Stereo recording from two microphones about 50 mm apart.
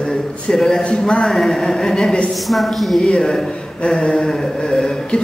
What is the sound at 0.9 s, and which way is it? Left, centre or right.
Speech, left.